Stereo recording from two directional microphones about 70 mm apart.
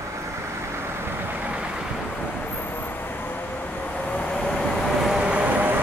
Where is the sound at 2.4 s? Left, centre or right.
Left; by 5.2 s centre.